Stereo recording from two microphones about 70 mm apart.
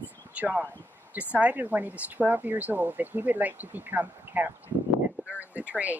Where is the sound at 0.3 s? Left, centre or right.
Right.